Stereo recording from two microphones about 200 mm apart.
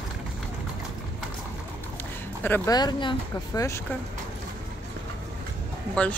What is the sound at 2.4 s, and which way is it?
Speech, 10° left (ahead or behind).